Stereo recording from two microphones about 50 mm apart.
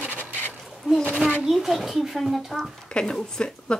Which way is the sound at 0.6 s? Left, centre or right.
Centre.